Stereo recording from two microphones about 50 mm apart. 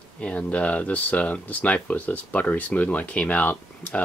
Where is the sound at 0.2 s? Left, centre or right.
Left.